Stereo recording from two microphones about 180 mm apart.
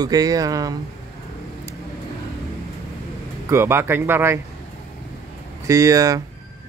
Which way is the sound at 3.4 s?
15° right (ahead or behind).